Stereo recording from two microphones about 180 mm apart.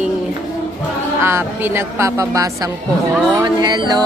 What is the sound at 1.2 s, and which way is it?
Music, 15° right (ahead or behind).